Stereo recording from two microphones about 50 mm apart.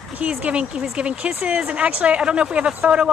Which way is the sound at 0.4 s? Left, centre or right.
Right.